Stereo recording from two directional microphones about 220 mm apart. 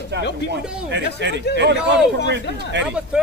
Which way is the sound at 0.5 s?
50° right (ahead or behind).